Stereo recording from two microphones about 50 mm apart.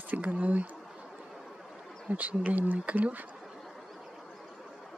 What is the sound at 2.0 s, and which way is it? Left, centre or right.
Speech, right.